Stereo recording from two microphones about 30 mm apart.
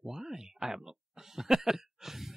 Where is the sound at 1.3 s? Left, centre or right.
Centre.